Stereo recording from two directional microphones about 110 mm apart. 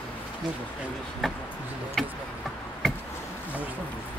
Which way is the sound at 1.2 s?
Centre (ahead or behind).